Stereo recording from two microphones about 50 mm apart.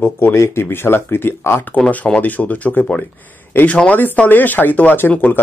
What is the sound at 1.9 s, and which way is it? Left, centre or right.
Speech, left.